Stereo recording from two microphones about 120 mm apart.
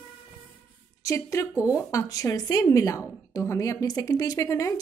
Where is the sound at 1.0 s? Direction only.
25° left (ahead or behind).